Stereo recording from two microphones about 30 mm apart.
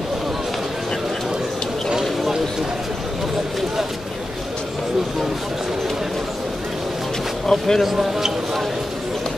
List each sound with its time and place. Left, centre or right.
1.9 s a sound: centre
7.4 s speech: centre
7.8 s speech: centre